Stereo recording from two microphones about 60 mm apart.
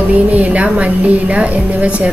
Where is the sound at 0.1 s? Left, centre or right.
Right.